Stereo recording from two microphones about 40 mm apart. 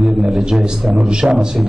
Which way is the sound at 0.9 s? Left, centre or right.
Right.